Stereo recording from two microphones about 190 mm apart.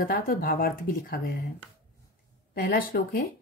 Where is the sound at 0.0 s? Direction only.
50° left (ahead or behind).